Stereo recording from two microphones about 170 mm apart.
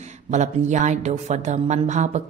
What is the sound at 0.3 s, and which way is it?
Speech, 45° right (ahead or behind).